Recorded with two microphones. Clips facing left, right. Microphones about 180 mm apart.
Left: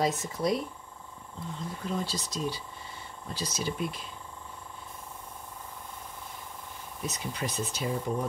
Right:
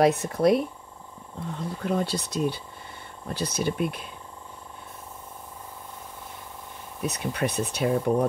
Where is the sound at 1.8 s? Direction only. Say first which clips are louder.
Right 7 dB; 65° right (ahead or behind).